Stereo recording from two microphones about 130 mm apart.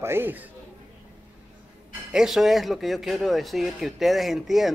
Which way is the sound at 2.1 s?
5° right (ahead or behind).